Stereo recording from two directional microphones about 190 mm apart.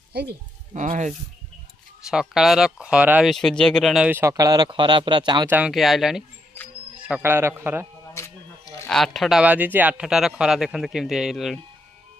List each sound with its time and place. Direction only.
0.1 s speech: 60° right (ahead or behind)
0.7 s speech: 40° right (ahead or behind)
2.0 s speech: centre (ahead or behind); by 5.5 s 25° right (ahead or behind)
5.5 s speech: 5° right (ahead or behind)
8.2 s a sound: 15° left (ahead or behind)
8.8 s speech: centre (ahead or behind)